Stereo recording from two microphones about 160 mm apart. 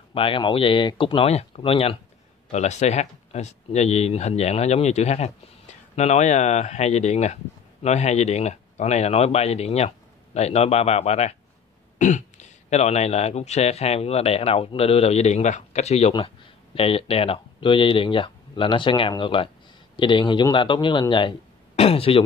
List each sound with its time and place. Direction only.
0.1 s speech: 35° left (ahead or behind)